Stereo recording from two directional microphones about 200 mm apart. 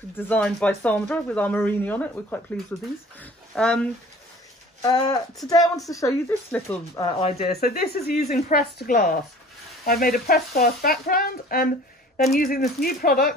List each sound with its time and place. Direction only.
0.3 s speech: 5° left (ahead or behind)
4.8 s speech: 20° left (ahead or behind)
7.1 s speech: 30° left (ahead or behind)
7.6 s speech: 50° left (ahead or behind)